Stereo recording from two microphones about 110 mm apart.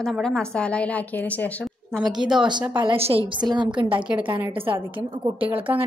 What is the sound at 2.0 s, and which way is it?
Speech, 5° right (ahead or behind).